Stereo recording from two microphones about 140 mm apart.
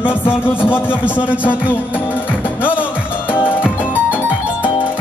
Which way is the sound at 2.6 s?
15° left (ahead or behind).